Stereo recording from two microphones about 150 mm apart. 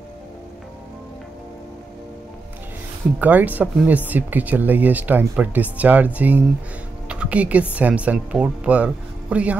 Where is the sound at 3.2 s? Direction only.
10° right (ahead or behind).